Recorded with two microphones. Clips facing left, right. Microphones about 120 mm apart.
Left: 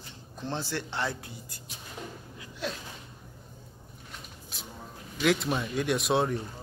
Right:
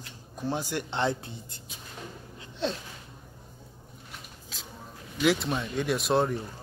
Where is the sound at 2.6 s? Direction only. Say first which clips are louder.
Right 5 dB; 25° right (ahead or behind).